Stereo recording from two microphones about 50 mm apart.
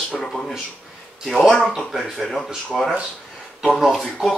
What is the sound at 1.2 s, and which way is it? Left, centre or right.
Speech, centre.